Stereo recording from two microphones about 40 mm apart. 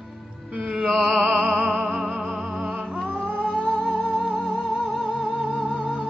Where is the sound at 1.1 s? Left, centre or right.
Centre.